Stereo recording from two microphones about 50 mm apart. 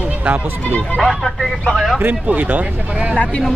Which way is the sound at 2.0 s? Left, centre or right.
Right.